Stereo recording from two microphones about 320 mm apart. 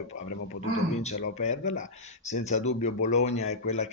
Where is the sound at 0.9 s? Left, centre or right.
Left.